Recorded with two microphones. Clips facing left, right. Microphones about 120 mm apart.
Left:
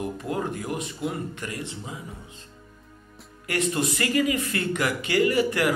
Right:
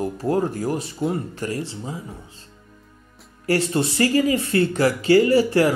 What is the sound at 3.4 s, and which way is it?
Speech, 35° right (ahead or behind).